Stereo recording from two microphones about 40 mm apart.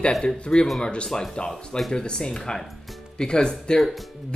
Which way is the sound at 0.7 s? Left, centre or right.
Centre.